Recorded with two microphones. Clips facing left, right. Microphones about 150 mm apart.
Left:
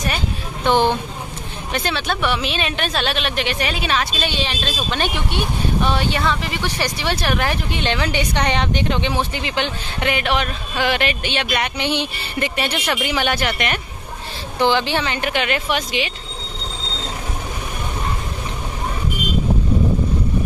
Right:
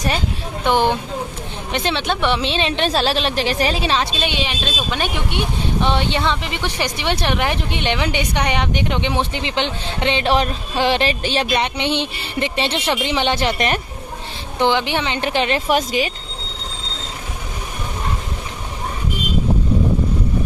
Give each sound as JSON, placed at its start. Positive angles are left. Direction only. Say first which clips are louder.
{"t": 0.7, "sound": "speech", "louder": "even", "side_deg": -15}
{"t": 11.6, "sound": "speech", "louder": "right 1 dB", "side_deg": -25}
{"t": 14.6, "sound": "speech", "louder": "even", "side_deg": -15}